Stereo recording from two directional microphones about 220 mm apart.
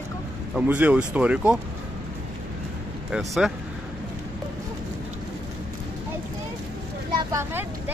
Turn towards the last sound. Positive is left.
turn(degrees=-10)  # may be behind; listen again after turning